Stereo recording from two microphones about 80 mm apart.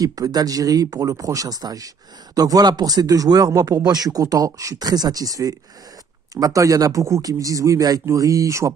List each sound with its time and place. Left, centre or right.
0.0 s speech: right